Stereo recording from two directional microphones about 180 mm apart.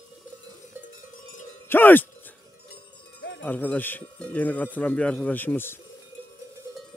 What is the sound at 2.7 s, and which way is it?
Cowbell, 75° left (ahead or behind).